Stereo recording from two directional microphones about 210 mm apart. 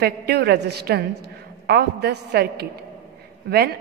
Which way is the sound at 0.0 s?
50° right (ahead or behind).